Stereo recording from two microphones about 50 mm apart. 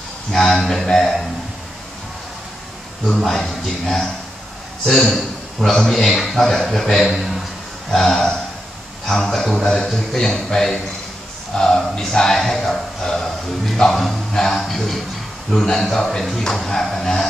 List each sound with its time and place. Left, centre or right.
0.3 s a man's voice: centre
3.3 s a man's voice: centre